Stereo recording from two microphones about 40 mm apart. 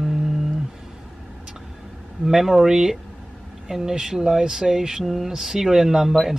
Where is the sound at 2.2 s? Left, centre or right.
Centre.